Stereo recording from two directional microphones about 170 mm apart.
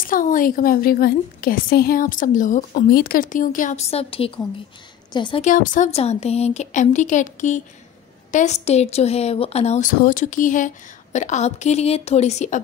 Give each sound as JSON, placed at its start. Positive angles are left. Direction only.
{"t": 0.0, "sound": "a woman's voice", "side_deg": 55}
{"t": 2.9, "sound": "a woman's voice", "side_deg": 60}
{"t": 5.4, "sound": "speech", "side_deg": 50}
{"t": 5.9, "sound": "a woman's voice", "side_deg": 40}